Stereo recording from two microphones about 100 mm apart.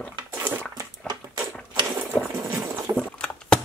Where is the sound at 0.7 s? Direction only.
40° right (ahead or behind).